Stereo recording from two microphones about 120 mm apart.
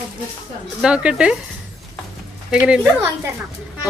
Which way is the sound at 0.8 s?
10° right (ahead or behind).